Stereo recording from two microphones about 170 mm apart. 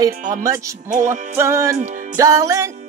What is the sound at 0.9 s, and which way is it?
Music, 50° right (ahead or behind).